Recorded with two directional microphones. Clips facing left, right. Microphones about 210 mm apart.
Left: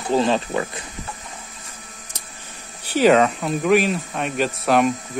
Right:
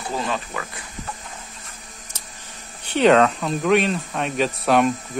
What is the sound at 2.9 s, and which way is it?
Speech, 5° left (ahead or behind).